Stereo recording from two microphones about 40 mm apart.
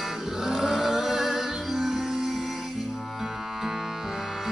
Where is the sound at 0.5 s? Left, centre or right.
Centre.